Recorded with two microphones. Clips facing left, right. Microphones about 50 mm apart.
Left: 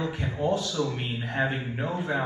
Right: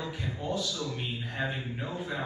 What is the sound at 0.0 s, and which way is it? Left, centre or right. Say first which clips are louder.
Speech: left 7 dB; left.